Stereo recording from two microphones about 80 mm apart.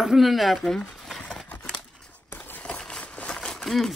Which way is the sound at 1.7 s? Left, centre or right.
Centre.